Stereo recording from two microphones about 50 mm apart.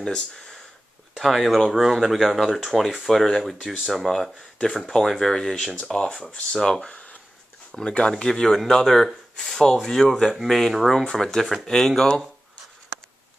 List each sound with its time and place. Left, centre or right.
1.1 s speech: centre
5.9 s speech: centre